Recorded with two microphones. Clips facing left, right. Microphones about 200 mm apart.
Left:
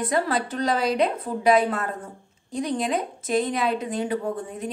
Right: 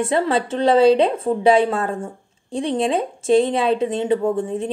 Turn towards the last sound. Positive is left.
turn(degrees=-25)  # may be behind; listen again after turning